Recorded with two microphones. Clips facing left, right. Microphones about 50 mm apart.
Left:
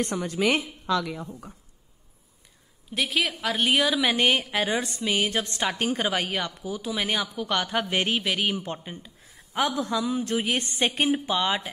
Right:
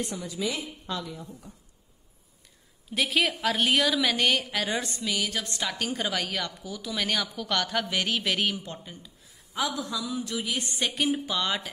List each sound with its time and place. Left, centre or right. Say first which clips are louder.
0.0 s a woman's voice: left 6 dB; left
0.8 s speech: left 8 dB; left
2.9 s a woman's voice: even; centre
4.1 s a woman's voice: left 3 dB; left
4.8 s a woman's voice: left 4 dB; left; by 7.8 s centre
7.9 s a woman's voice: left 5 dB; left
8.2 s a woman's voice: left 1 dB; centre
8.8 s speech: left 5 dB; left